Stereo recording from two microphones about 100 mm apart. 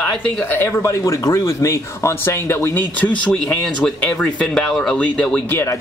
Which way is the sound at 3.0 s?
10° left (ahead or behind).